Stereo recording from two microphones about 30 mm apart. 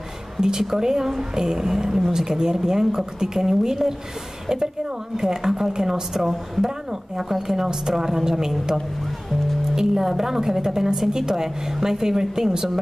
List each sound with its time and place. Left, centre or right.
0.4 s a woman's voice: centre
5.1 s speech: centre
9.8 s speech: centre